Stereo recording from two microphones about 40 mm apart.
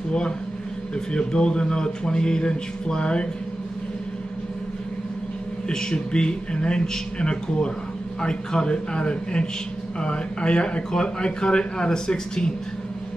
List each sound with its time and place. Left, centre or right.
1.1 s a man's voice: left
5.7 s a man's voice: centre